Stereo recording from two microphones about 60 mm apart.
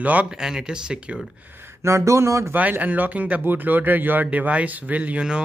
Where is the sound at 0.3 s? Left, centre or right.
Centre.